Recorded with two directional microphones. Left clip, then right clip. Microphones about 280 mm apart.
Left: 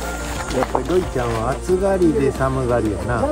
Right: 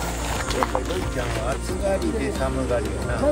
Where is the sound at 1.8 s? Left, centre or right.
Right.